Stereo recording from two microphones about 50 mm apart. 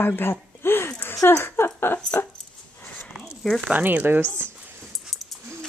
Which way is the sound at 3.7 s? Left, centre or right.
Right.